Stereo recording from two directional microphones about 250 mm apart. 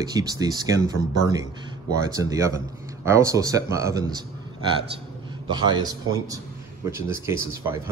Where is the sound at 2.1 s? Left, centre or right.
Centre.